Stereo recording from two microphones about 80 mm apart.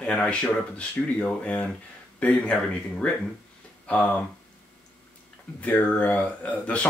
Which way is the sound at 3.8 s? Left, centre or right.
Centre.